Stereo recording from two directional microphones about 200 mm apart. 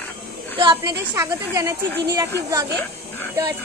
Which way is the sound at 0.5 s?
20° right (ahead or behind).